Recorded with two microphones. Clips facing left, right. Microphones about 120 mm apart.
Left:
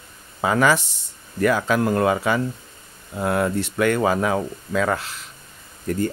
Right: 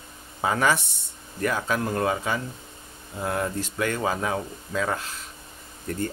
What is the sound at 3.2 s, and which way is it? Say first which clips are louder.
Speech: left 6 dB; 70° left (ahead or behind).